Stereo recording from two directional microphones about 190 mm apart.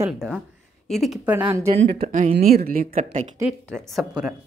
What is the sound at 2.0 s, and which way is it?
Speech, 40° right (ahead or behind).